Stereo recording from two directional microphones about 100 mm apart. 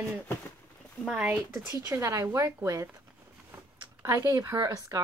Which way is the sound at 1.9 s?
30° right (ahead or behind).